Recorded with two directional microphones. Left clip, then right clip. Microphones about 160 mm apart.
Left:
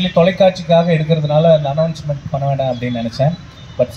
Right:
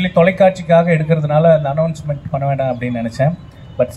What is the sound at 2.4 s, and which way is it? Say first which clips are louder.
Speech: even; 30° left (ahead or behind).